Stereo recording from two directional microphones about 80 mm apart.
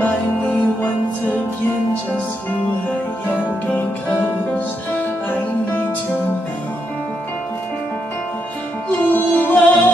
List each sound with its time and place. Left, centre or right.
8.9 s music: left